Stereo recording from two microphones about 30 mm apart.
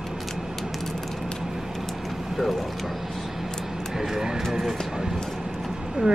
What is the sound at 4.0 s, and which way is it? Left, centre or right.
Speech, centre.